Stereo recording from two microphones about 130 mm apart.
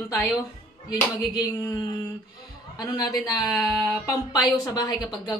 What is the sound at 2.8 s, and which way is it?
A woman's voice, 30° left (ahead or behind).